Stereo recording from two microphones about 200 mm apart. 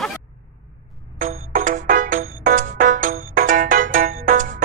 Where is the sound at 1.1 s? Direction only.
40° right (ahead or behind).